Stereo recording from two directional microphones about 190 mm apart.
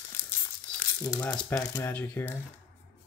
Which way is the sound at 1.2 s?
5° left (ahead or behind).